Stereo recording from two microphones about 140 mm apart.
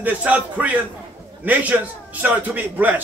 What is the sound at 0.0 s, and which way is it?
A man's voice, 10° right (ahead or behind).